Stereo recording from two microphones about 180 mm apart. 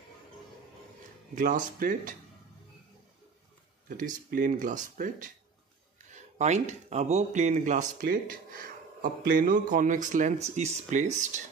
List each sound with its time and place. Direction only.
1.3 s speech: 50° right (ahead or behind)
3.9 s speech: 50° right (ahead or behind)